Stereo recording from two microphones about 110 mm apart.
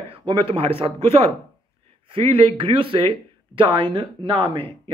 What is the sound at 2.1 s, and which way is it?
Speech, 55° right (ahead or behind).